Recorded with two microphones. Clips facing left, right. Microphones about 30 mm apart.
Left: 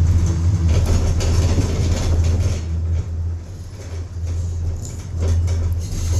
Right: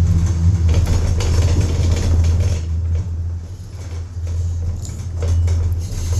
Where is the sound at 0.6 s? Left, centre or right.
Centre.